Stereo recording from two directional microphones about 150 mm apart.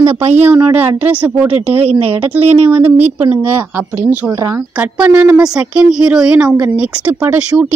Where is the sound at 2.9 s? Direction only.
45° right (ahead or behind).